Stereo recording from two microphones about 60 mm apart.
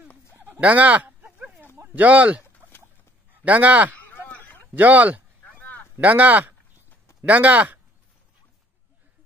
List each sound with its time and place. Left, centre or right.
0.6 s speech: right
3.4 s speech: right
4.3 s a sound: left
4.7 s speech: right
5.6 s a sound: left
5.9 s speech: right